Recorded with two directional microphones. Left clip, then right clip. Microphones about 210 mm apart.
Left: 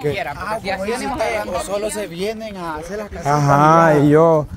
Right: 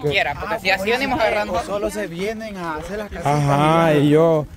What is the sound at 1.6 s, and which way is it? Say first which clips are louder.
Speech: left 1 dB; 50° left (ahead or behind).